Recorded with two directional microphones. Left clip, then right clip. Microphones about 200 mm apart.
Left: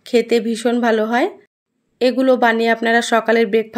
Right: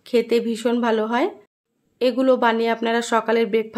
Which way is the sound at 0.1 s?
15° left (ahead or behind).